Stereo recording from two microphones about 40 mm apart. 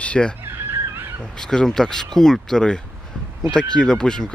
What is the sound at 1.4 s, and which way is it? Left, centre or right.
Speech, centre.